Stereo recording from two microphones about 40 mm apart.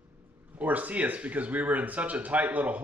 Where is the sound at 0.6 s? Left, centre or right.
Right.